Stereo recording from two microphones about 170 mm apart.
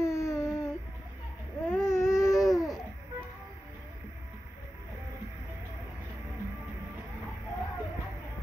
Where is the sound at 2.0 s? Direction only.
5° right (ahead or behind).